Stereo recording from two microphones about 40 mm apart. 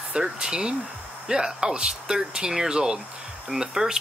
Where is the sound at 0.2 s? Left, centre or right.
Centre.